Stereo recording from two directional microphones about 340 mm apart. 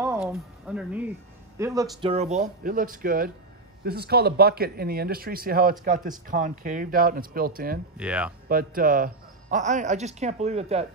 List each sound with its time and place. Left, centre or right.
0.0 s speech: centre; by 7.8 s right
8.0 s speech: centre
8.5 s speech: right